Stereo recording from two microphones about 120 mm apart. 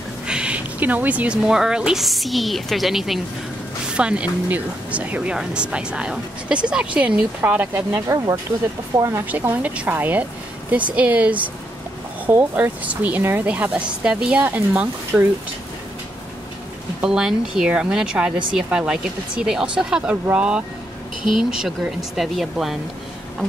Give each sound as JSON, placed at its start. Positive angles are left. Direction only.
{"t": 0.3, "sound": "a woman's voice", "side_deg": -10}
{"t": 8.9, "sound": "a woman's voice", "side_deg": -30}
{"t": 9.2, "sound": "speech", "side_deg": -15}
{"t": 17.0, "sound": "a woman's voice", "side_deg": -5}